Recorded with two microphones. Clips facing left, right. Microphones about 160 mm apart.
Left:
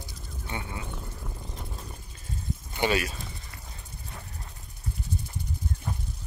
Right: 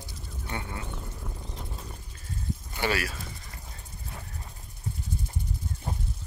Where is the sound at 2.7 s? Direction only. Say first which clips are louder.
Left 3 dB; 20° left (ahead or behind).